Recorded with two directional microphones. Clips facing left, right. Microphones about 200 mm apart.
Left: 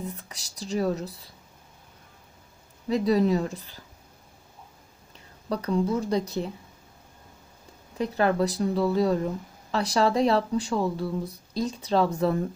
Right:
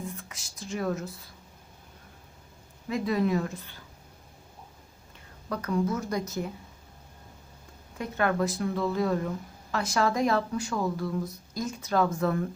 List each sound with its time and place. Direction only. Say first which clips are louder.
0.3 s speech: left 5 dB; 35° left (ahead or behind)
2.9 s speech: left 5 dB; 35° left (ahead or behind)
5.5 s speech: left 3 dB; 30° left (ahead or behind)
8.0 s speech: left 3 dB; 35° left (ahead or behind)